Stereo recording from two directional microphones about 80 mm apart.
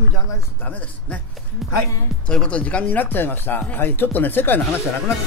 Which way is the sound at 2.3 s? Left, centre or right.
Centre.